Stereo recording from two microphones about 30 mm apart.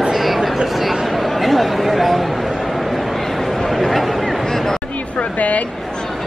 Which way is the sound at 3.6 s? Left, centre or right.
Centre.